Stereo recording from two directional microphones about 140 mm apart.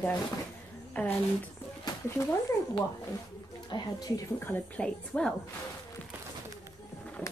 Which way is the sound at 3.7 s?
30° left (ahead or behind).